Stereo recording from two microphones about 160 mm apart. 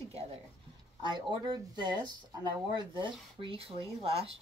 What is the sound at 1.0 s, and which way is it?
Speech, 30° right (ahead or behind).